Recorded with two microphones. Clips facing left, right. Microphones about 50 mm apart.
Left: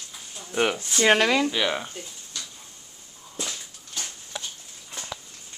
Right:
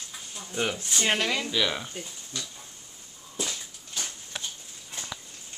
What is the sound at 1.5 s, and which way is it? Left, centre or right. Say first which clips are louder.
Speech: left 2 dB; centre.